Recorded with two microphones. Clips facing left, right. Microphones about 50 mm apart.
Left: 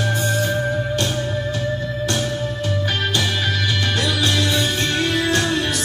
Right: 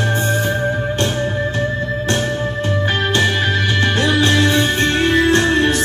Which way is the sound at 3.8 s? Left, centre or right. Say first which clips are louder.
Right 7 dB; right.